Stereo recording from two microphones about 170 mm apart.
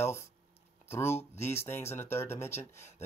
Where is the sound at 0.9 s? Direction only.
15° left (ahead or behind).